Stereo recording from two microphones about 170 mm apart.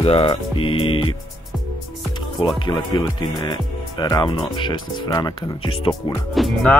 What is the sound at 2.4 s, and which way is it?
Speech, 25° left (ahead or behind).